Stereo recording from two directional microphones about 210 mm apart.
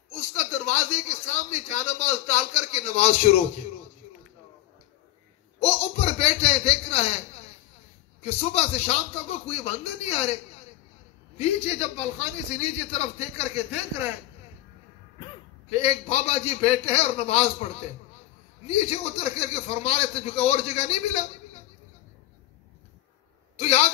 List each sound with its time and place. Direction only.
0.1 s speech: 35° left (ahead or behind)
5.6 s a sound: 30° left (ahead or behind)
8.2 s speech: 30° left (ahead or behind)
11.3 s speech: 30° left (ahead or behind)
15.7 s speech: 30° left (ahead or behind)
23.5 s a man's voice: 30° left (ahead or behind)